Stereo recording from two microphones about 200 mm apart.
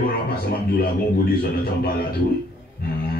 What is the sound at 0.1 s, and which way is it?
A man's voice, 50° left (ahead or behind).